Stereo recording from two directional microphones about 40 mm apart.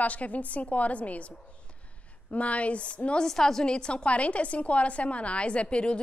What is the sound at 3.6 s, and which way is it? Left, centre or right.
A woman's voice, left.